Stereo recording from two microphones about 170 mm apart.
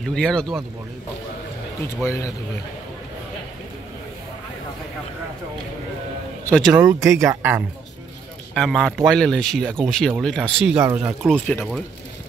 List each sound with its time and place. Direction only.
0.0 s speech: 5° left (ahead or behind)
2.0 s speech: 15° left (ahead or behind)
6.7 s speech: 10° right (ahead or behind)
8.5 s speech: centre (ahead or behind)
11.3 s speech: 5° left (ahead or behind)